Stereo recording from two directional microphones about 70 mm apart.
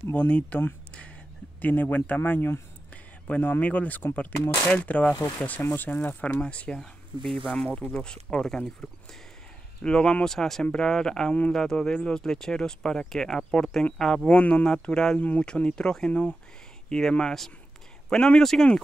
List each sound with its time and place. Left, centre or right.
0.1 s speech: centre
6.8 s speech: centre
9.8 s speech: centre